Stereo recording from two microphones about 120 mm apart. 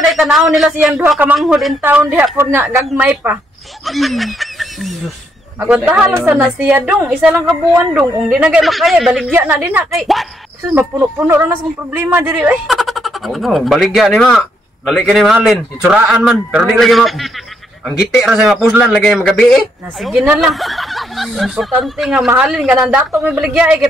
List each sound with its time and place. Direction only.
0.0 s a woman's voice: centre (ahead or behind)
2.3 s a woman's voice: 20° right (ahead or behind)
3.8 s speech: centre (ahead or behind)
5.7 s a woman's voice: 10° right (ahead or behind)
9.3 s a woman's voice: 15° right (ahead or behind)
9.8 s speech: centre (ahead or behind)
10.7 s speech: 20° right (ahead or behind)
12.6 s a man's voice: centre (ahead or behind)